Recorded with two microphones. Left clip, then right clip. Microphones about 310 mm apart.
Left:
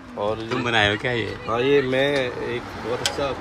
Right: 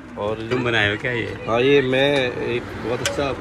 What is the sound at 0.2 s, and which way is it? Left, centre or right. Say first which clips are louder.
Speech: even; left.